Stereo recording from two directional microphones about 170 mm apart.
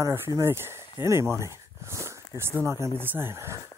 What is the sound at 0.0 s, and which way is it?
Speech, 15° right (ahead or behind).